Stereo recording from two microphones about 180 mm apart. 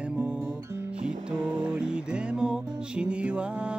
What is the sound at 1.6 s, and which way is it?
Music, 5° right (ahead or behind).